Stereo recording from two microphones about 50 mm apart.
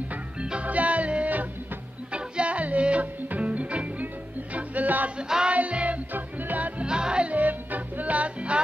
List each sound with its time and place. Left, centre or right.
0.4 s music: right
6.8 s music: centre
7.3 s music: right